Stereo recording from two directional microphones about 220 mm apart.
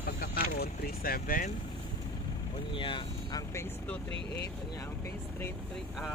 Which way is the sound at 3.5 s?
10° left (ahead or behind).